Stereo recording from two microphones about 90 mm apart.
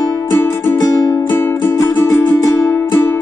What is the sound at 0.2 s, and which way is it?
Music, 30° left (ahead or behind).